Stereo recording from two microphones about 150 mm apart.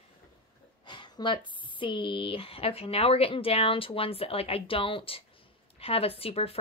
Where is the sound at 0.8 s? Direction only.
30° left (ahead or behind).